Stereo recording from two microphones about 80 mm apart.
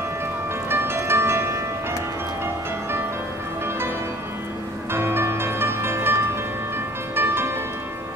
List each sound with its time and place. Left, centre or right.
0.7 s music: right
4.9 s music: right